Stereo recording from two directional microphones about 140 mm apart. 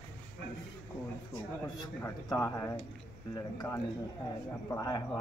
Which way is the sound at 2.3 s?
25° left (ahead or behind).